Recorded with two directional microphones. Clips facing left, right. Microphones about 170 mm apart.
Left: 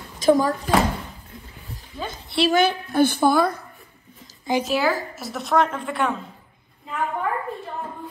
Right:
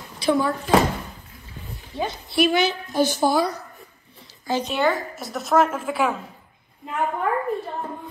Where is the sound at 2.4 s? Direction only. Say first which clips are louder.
Left 2 dB; 50° left (ahead or behind).